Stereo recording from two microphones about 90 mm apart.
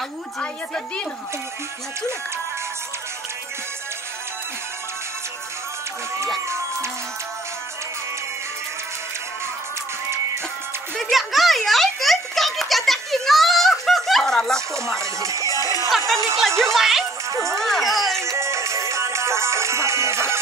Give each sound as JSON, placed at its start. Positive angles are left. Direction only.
{"t": 0.4, "sound": "speech", "side_deg": 10}
{"t": 6.4, "sound": "music", "side_deg": -30}
{"t": 11.0, "sound": "a sound", "side_deg": 0}
{"t": 14.7, "sound": "speech", "side_deg": -35}
{"t": 15.6, "sound": "music", "side_deg": 40}
{"t": 16.3, "sound": "speech", "side_deg": 5}
{"t": 17.3, "sound": "speech", "side_deg": -35}
{"t": 17.6, "sound": "speech", "side_deg": 0}
{"t": 18.4, "sound": "music", "side_deg": -30}